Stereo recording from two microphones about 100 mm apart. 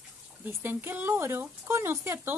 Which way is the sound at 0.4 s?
20° right (ahead or behind).